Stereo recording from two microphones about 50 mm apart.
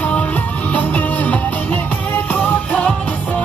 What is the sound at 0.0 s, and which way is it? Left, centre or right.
Music, left.